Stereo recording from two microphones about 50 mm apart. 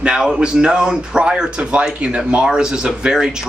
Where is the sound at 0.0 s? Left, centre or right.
Centre.